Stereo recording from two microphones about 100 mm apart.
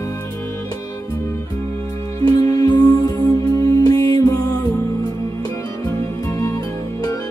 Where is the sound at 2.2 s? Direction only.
40° left (ahead or behind).